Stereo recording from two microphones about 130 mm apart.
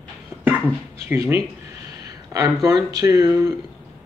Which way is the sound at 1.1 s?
20° right (ahead or behind).